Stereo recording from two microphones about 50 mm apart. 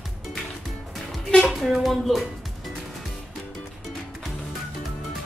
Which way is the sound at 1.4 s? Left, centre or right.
Centre.